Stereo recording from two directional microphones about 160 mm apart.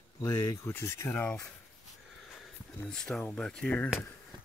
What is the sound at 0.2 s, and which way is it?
Speech, 15° left (ahead or behind).